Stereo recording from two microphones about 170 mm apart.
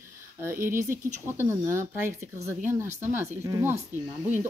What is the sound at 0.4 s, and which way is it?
Speech, 15° right (ahead or behind).